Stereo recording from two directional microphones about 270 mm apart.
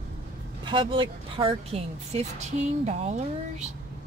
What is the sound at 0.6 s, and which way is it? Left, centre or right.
Speech, centre.